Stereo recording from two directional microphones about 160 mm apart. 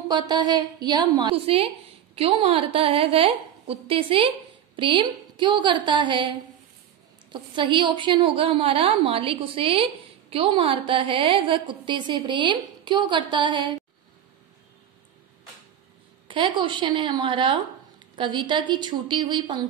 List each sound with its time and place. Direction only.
0.1 s a woman's voice: 25° right (ahead or behind)
7.5 s a woman's voice: 30° right (ahead or behind)
16.3 s a woman's voice: 30° right (ahead or behind)